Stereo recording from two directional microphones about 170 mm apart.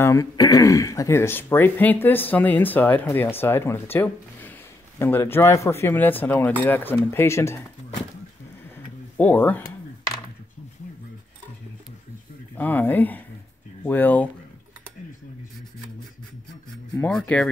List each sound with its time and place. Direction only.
0.0 s speech: 20° left (ahead or behind)
9.1 s speech: 10° left (ahead or behind)
12.5 s speech: 10° left (ahead or behind)
16.7 s speech: 5° left (ahead or behind)